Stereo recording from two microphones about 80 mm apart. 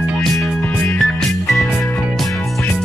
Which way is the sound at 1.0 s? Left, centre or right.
Centre.